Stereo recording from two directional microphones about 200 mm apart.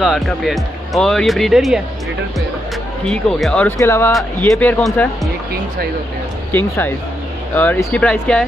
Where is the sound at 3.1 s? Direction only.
5° left (ahead or behind).